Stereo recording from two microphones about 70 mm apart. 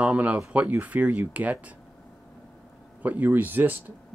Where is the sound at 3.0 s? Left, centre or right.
Right.